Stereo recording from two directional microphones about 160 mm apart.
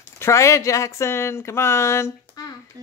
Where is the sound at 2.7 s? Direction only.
25° right (ahead or behind).